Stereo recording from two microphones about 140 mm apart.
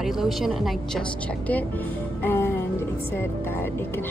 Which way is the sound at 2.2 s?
15° left (ahead or behind).